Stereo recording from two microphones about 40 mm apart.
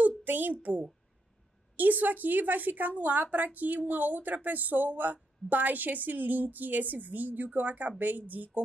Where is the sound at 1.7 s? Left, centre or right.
Right.